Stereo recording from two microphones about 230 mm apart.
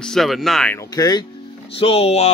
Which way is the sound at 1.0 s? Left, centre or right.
Centre.